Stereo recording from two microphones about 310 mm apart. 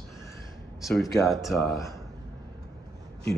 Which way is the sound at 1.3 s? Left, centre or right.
Centre.